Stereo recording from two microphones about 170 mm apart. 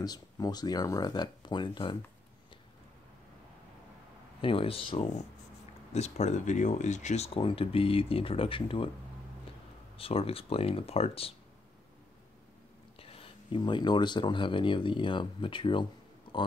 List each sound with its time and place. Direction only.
0.0 s speech: 25° left (ahead or behind)
4.4 s speech: 30° left (ahead or behind)
9.9 s speech: 35° left (ahead or behind)
13.0 s speech: 35° left (ahead or behind)